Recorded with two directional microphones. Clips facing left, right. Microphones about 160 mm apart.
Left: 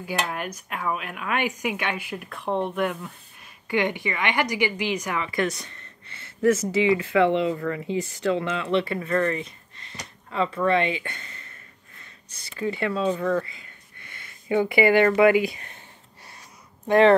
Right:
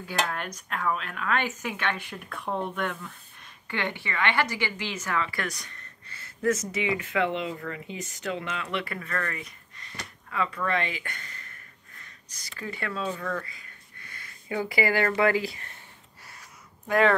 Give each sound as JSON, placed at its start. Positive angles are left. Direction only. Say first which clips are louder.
{"t": 0.0, "sound": "a woman's voice", "louder": "left 2 dB", "side_deg": 10}
{"t": 16.8, "sound": "speech", "louder": "left 6 dB", "side_deg": 30}